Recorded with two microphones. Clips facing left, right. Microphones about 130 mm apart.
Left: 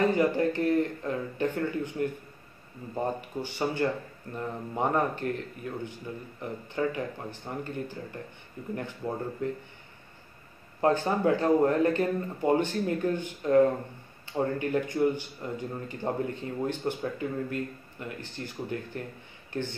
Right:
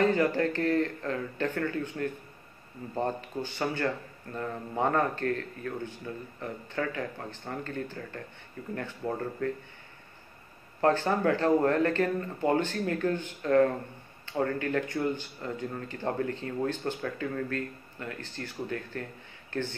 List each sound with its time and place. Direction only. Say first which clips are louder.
0.0 s speech: left 1 dB; 15° left (ahead or behind)
10.8 s speech: even; 15° left (ahead or behind)